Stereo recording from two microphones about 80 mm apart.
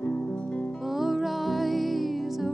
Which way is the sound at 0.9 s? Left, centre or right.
Centre.